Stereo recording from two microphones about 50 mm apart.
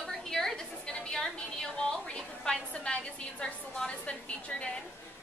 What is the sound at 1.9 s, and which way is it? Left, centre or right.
A woman's voice, centre.